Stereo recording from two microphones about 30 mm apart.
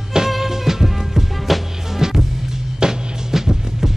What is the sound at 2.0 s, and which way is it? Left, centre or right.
Music, centre.